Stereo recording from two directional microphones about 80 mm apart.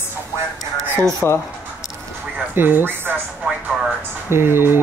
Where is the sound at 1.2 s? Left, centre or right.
Left.